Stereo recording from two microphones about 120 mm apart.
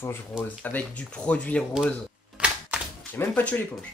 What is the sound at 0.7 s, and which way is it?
Speech, 10° left (ahead or behind).